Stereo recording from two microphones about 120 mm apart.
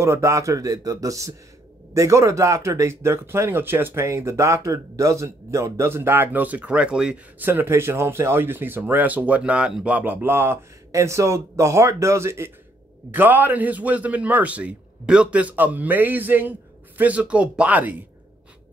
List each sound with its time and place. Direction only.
0.0 s a man's voice: 25° right (ahead or behind)